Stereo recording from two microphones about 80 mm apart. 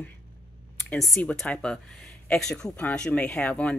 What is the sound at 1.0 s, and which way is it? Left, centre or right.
Speech, centre.